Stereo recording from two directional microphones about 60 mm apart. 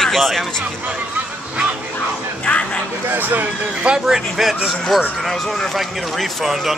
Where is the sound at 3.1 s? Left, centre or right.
Right.